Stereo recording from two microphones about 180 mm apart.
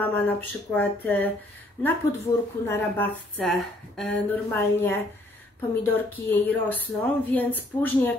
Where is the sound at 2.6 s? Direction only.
10° left (ahead or behind).